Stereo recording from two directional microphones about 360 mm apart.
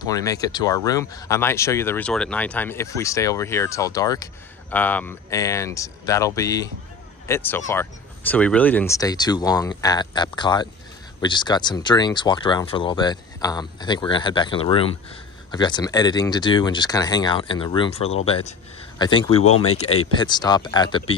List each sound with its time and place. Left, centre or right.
0.0 s speech: centre
19.3 s speech: left
20.0 s speech: centre